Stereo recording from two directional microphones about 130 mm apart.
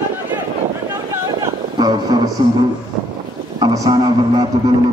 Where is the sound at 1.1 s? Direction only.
25° right (ahead or behind).